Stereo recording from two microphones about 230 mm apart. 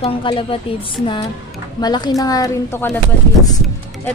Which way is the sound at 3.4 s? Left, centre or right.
Centre.